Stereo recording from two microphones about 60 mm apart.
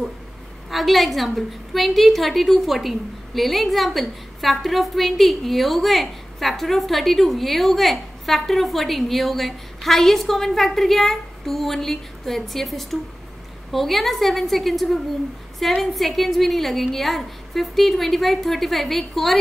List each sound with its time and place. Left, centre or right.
0.7 s a woman's voice: centre